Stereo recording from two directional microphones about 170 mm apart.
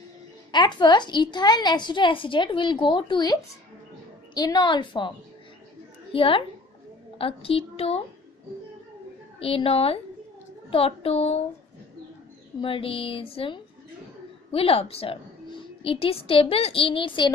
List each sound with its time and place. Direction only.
0.5 s a woman's voice: 25° left (ahead or behind)
6.1 s a woman's voice: 30° left (ahead or behind)
9.4 s a woman's voice: 30° left (ahead or behind)
12.5 s a woman's voice: 30° left (ahead or behind)